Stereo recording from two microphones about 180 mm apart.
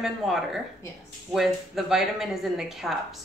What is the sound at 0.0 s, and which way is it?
Speech, centre (ahead or behind).